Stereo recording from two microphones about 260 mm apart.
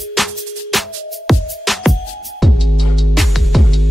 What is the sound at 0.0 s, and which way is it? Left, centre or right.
Music, centre.